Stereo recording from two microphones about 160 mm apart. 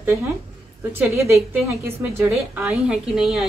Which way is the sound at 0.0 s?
15° right (ahead or behind).